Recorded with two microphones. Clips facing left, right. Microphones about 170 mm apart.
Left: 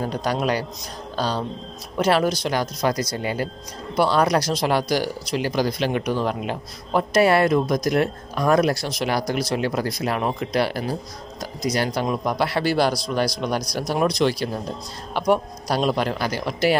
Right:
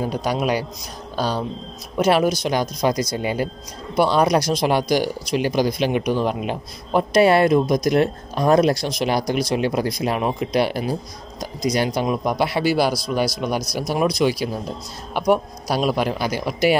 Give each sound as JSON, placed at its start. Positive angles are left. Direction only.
{"t": 0.0, "sound": "speech", "side_deg": -10}